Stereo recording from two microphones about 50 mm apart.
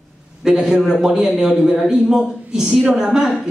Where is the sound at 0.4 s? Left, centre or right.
Centre.